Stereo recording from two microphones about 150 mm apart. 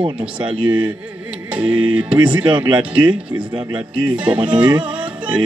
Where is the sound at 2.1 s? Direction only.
25° right (ahead or behind).